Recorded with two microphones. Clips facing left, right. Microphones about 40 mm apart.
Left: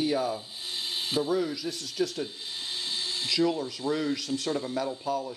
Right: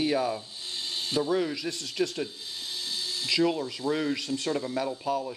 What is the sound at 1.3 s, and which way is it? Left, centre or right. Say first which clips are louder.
Speech: right 1 dB; right.